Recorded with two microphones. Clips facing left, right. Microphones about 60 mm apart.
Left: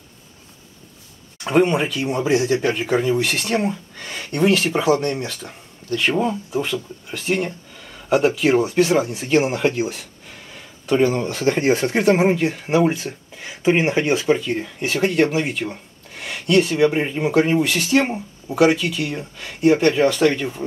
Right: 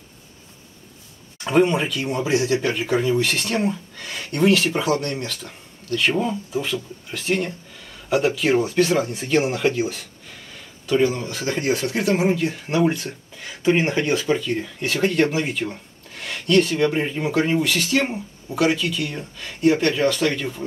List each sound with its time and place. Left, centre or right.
1.4 s speech: centre
6.5 s speech: centre
9.4 s speech: centre
10.9 s speech: left